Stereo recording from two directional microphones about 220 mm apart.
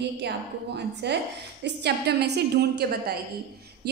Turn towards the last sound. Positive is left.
turn(degrees=-45)  # may be behind; listen again after turning